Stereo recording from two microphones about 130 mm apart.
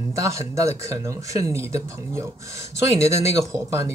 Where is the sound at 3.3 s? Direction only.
25° right (ahead or behind).